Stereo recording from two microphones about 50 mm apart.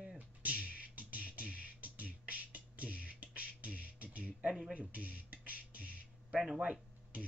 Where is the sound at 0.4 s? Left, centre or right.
Right.